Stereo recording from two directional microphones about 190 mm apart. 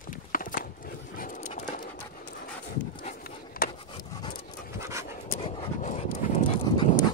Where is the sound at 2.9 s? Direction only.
45° left (ahead or behind).